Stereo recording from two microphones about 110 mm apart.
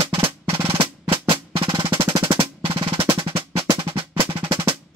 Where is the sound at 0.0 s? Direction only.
55° right (ahead or behind).